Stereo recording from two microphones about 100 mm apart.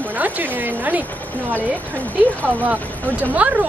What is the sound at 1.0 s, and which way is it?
Speech, 15° left (ahead or behind).